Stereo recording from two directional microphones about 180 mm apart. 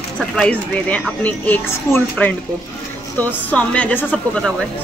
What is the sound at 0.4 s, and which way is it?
A woman's voice, 5° left (ahead or behind).